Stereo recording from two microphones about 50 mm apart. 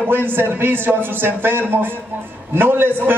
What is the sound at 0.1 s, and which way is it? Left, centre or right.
Speech, right.